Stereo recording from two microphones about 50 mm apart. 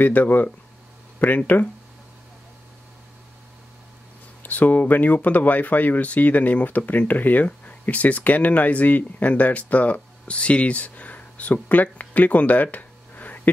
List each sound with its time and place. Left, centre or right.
0.0 s speech: left
4.4 s speech: left